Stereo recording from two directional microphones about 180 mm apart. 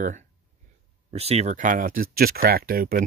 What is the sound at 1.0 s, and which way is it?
Speech, 35° right (ahead or behind).